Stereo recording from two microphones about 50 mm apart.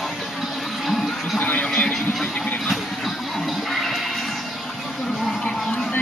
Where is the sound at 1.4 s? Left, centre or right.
Left.